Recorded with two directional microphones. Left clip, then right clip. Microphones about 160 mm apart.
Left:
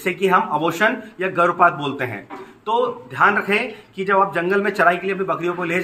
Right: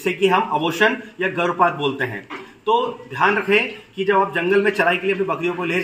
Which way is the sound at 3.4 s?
25° left (ahead or behind).